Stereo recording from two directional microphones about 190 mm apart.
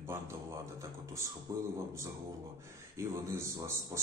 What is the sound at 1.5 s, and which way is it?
Speech, 20° right (ahead or behind).